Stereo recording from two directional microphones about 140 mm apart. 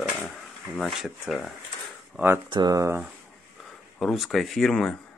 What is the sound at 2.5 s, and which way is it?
Speech, 30° right (ahead or behind).